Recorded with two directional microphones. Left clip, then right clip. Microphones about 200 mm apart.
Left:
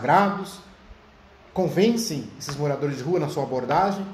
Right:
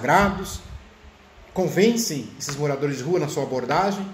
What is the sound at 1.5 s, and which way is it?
Speech, 5° right (ahead or behind).